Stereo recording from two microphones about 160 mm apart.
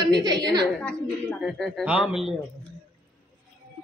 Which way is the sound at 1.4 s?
Centre (ahead or behind).